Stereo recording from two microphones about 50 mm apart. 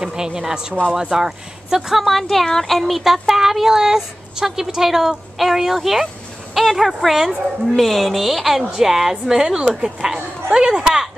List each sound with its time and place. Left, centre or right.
0.0 s speech: centre